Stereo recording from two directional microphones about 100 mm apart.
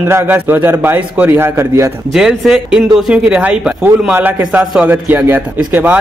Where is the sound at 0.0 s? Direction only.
20° right (ahead or behind).